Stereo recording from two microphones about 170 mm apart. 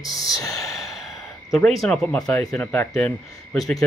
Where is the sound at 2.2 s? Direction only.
20° left (ahead or behind); by 3.8 s centre (ahead or behind).